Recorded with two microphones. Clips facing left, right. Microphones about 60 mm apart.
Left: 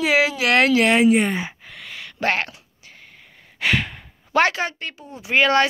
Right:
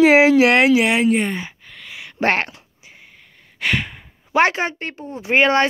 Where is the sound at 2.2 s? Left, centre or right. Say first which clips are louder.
Right 3 dB; right.